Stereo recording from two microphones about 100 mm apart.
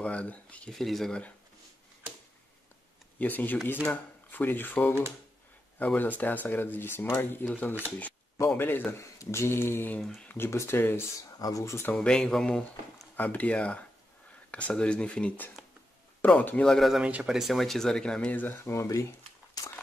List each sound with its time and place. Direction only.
0.0 s speech: 10° left (ahead or behind)
3.2 s speech: 15° left (ahead or behind)
11.3 s speech: 35° left (ahead or behind); by 13.1 s 5° left (ahead or behind)
13.1 s speech: 15° left (ahead or behind)
16.7 s speech: centre (ahead or behind)
17.0 s speech: 10° right (ahead or behind)
17.4 s speech: centre (ahead or behind); by 19.7 s 35° left (ahead or behind)